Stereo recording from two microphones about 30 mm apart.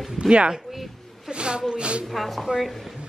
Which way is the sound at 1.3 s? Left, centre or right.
Right.